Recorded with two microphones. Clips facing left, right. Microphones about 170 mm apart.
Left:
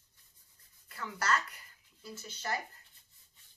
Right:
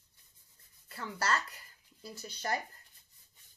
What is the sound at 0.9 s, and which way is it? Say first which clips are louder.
Speech: even; 30° right (ahead or behind).